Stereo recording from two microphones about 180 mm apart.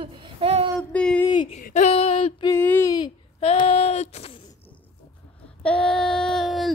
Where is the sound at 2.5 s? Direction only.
10° left (ahead or behind).